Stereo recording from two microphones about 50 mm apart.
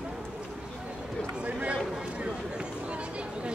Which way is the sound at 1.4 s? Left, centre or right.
Right.